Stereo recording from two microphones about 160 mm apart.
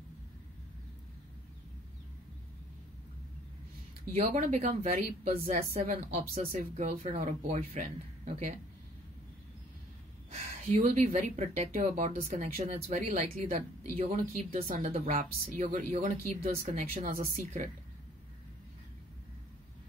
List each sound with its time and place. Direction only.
4.3 s a woman's voice: 55° right (ahead or behind)
5.8 s speech: 40° right (ahead or behind)
10.3 s speech: 45° right (ahead or behind)
11.9 s speech: 55° right (ahead or behind)